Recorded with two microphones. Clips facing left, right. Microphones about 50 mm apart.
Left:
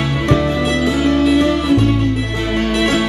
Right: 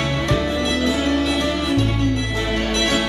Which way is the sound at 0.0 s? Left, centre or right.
Centre.